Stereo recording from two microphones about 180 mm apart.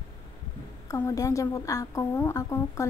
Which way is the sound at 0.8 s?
15° left (ahead or behind).